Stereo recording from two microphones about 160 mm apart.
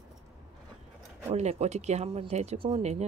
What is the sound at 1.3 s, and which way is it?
A woman's voice, 45° right (ahead or behind).